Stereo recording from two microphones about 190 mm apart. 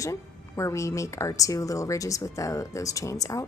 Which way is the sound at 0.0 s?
15° left (ahead or behind).